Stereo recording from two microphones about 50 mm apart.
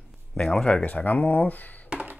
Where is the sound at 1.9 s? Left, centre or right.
Right.